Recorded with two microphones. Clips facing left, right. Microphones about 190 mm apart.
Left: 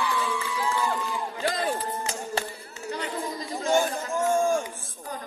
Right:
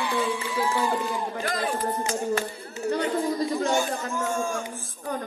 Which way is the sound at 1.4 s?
30° left (ahead or behind).